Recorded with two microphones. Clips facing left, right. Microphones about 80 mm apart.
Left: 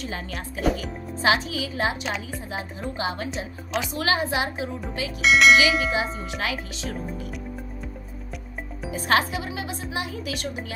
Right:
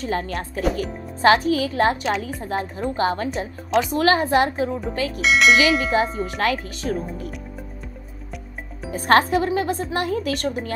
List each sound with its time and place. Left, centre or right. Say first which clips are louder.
0.0 s speech: right 7 dB; right
5.2 s speech: even; centre
5.8 s speech: right 5 dB; right
8.9 s speech: right 6 dB; right